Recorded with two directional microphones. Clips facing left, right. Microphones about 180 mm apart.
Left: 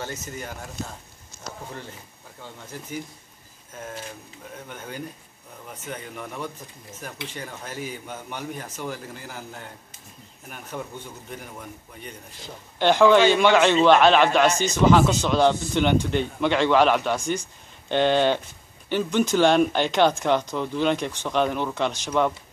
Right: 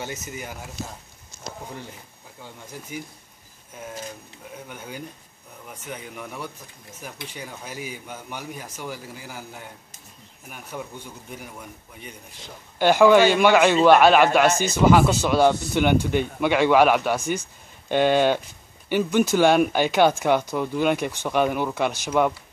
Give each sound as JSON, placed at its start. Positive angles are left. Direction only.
{"t": 0.0, "sound": "a man's voice", "side_deg": -10}
{"t": 2.4, "sound": "a man's voice", "side_deg": -10}
{"t": 4.6, "sound": "a man's voice", "side_deg": -10}